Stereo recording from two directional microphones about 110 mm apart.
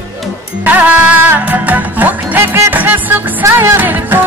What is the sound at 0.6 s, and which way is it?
Music, 15° right (ahead or behind).